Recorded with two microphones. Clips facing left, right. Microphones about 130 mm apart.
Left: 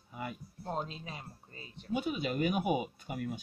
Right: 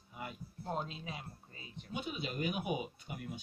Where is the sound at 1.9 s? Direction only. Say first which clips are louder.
Left 7 dB; 50° left (ahead or behind).